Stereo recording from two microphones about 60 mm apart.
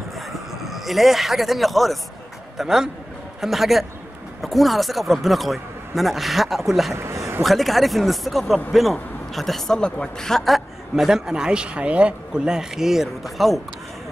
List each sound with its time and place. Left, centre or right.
0.7 s a man's voice: centre
6.9 s a sound: right
7.4 s speech: centre
9.8 s a man's voice: centre; by 12.5 s right
12.5 s speech: centre